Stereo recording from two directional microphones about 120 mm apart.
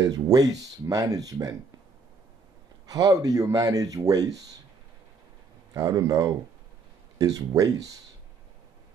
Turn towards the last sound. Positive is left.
turn(degrees=-30)  # may be behind; listen again after turning